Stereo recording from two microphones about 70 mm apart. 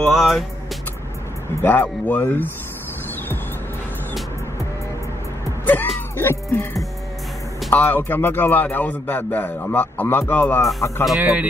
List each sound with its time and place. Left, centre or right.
0.2 s speech: centre
1.6 s a man's voice: left
5.7 s music: left
7.7 s a man's voice: left
11.1 s speech: centre